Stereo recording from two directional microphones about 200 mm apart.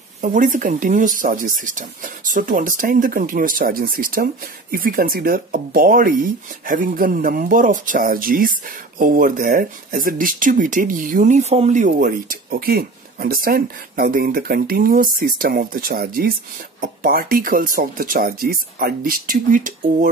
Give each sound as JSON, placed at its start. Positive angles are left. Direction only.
{"t": 0.2, "sound": "speech", "side_deg": -40}